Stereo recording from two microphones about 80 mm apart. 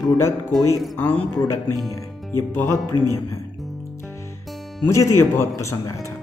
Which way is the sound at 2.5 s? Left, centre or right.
Left.